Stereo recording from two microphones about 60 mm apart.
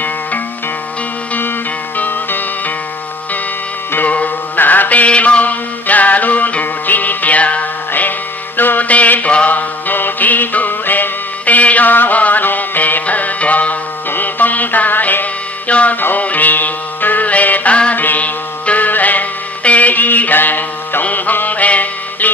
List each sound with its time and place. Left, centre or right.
2.0 s music: left
3.9 s music: left